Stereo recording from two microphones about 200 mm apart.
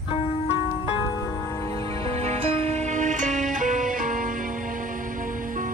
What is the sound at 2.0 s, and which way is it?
Music, 30° right (ahead or behind).